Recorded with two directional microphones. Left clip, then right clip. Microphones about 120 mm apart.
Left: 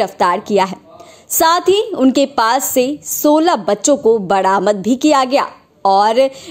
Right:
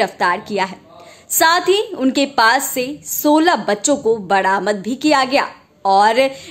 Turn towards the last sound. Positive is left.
turn(degrees=35)  # may be behind; listen again after turning